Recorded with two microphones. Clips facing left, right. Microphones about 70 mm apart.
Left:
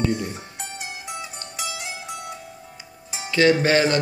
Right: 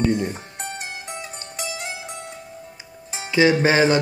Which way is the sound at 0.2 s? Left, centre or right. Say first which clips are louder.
Right 4 dB; right.